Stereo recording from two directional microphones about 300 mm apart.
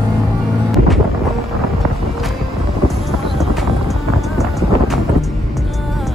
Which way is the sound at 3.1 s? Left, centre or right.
Centre.